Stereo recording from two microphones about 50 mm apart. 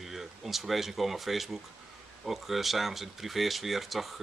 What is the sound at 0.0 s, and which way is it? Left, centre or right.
Speech, centre.